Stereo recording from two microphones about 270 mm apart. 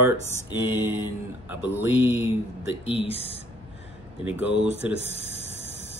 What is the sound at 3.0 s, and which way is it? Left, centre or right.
Speech, left.